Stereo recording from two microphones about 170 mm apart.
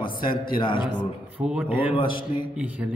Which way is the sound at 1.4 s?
5° right (ahead or behind).